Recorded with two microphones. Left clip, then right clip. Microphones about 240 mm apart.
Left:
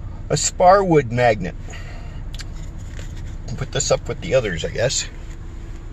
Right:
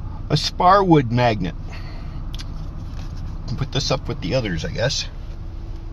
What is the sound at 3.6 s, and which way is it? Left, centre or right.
Speech, centre.